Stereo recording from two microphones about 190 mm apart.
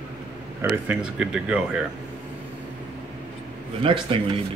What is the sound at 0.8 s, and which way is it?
Speech, 5° right (ahead or behind).